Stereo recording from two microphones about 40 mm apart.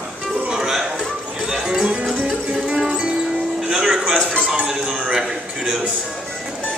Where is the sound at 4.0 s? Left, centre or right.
Right.